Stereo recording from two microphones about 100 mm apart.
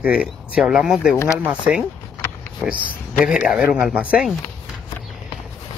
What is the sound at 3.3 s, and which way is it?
Speech, 10° right (ahead or behind).